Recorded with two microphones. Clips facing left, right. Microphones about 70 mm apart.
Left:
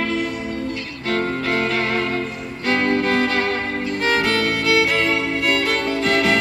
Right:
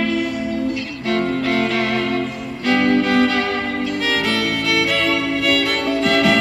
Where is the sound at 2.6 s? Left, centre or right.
Left.